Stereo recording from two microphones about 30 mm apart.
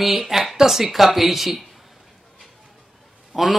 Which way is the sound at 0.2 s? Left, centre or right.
Centre.